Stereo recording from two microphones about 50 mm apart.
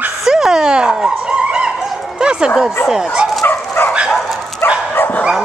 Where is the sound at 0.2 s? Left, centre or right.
Centre.